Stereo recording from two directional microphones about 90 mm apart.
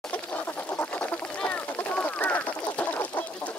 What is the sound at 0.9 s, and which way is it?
Duck, 15° left (ahead or behind).